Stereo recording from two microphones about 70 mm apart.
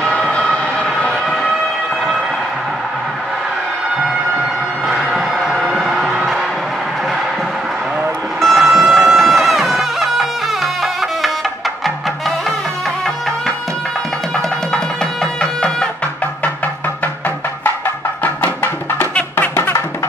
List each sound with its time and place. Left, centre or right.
0.3 s a sound: centre
4.8 s music: centre
8.4 s vehicle: centre
8.6 s music: centre
18.2 s music: left